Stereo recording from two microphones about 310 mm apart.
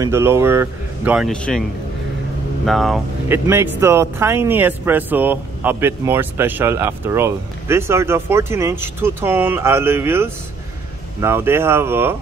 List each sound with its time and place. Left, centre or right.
0.0 s speech: centre
2.6 s speech: centre